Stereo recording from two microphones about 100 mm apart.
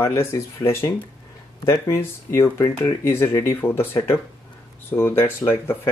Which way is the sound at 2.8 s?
25° left (ahead or behind).